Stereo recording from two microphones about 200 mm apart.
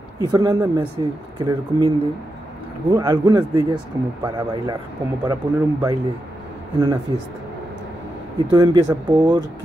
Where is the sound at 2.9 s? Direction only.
20° right (ahead or behind).